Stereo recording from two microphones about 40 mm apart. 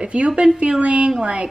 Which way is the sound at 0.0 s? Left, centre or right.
Right.